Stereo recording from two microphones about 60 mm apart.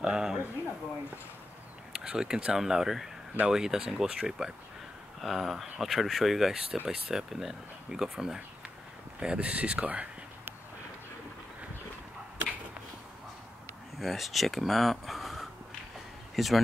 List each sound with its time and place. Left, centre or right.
0.0 s speech: centre
2.0 s speech: centre
13.9 s speech: centre